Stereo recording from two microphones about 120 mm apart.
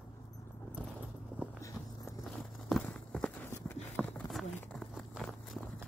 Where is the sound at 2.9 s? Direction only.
10° left (ahead or behind).